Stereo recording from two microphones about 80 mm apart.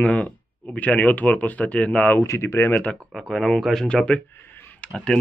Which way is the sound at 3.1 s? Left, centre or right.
Centre.